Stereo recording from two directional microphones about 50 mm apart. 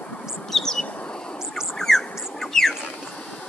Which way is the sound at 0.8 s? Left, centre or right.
Left.